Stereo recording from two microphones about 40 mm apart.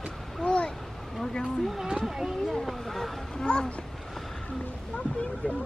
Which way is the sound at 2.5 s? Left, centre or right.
Centre.